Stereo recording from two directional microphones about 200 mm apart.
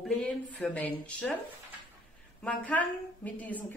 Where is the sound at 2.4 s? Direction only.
5° left (ahead or behind).